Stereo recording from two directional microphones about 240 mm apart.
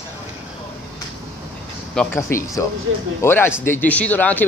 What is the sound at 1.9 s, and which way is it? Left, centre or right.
Speech, centre.